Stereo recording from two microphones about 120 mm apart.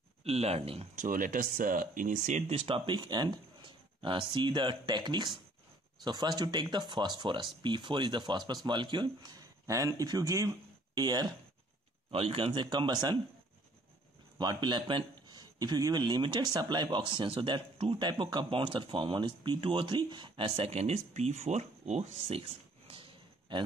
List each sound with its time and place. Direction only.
0.2 s speech: 60° right (ahead or behind)
2.0 s speech: 90° right
2.6 s a man's voice: 40° right (ahead or behind)
12.1 s speech: 50° right (ahead or behind)
12.6 s a man's voice: 35° right (ahead or behind)
14.4 s a man's voice: 35° right (ahead or behind); by 22.4 s 70° right (ahead or behind)